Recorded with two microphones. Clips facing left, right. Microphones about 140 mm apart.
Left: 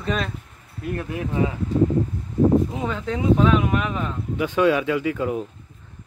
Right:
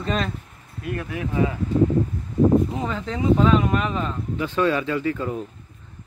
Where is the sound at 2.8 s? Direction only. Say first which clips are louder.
Left 1 dB; 5° left (ahead or behind).